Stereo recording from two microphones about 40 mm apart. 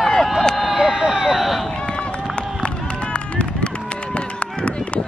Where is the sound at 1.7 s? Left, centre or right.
Left.